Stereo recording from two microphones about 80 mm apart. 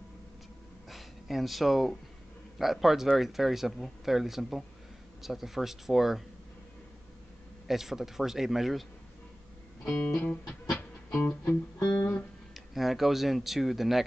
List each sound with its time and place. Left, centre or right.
0.8 s a sound: centre
2.6 s speech: centre
7.6 s speech: centre
10.8 s music: left
12.5 s speech: centre